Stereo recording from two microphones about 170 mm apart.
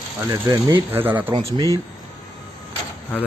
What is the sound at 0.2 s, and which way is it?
Speech, 20° right (ahead or behind).